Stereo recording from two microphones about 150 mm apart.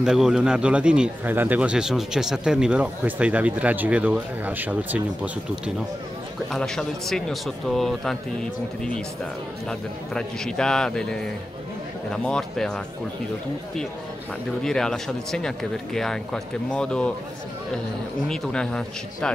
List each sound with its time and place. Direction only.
0.0 s speech: 5° right (ahead or behind)
6.5 s speech: 5° left (ahead or behind)
14.6 s speech: 5° left (ahead or behind)
18.3 s speech: 5° left (ahead or behind)